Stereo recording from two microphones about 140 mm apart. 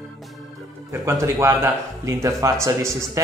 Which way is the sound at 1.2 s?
20° right (ahead or behind).